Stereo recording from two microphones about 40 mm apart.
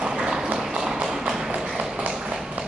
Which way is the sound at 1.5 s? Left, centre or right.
Centre.